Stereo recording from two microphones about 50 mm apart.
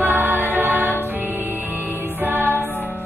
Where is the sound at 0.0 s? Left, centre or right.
Right.